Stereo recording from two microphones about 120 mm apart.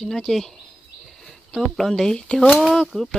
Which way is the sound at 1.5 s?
5° left (ahead or behind).